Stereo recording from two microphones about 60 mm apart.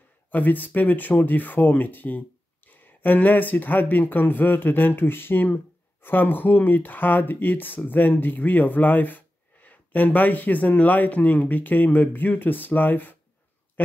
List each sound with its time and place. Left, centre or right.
0.3 s speech: left